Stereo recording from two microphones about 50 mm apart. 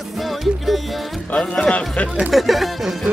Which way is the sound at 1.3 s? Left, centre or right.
Centre.